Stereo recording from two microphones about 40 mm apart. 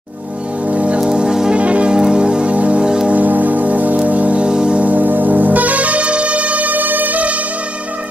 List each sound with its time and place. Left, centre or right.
0.7 s music: right
1.1 s music: centre
1.5 s music: right
2.0 s music: centre
2.4 s music: right
2.8 s music: centre
3.1 s music: right
4.8 s music: right